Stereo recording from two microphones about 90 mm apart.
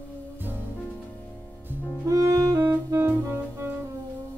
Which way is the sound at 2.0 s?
40° right (ahead or behind).